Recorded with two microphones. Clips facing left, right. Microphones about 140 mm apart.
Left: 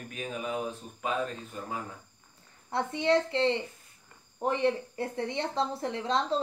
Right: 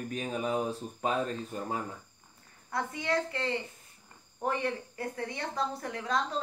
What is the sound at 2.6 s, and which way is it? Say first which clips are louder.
A woman's voice: left 5 dB; 25° left (ahead or behind).